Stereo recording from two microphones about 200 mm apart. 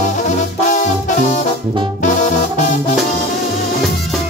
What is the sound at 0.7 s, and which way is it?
Music, 40° left (ahead or behind).